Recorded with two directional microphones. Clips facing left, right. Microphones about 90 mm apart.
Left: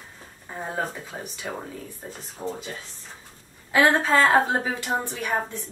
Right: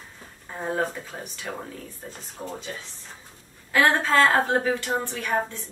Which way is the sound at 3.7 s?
15° left (ahead or behind).